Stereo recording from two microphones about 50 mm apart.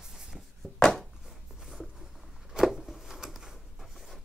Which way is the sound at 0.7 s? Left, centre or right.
Centre.